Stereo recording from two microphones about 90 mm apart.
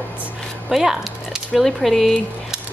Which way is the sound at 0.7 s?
5° right (ahead or behind).